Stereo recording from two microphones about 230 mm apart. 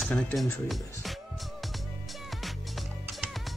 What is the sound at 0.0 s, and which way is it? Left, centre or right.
Speech, centre.